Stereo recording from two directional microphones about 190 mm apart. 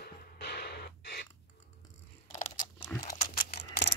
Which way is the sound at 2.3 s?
45° left (ahead or behind).